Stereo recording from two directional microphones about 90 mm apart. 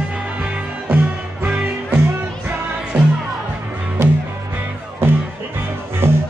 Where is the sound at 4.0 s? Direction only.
30° right (ahead or behind).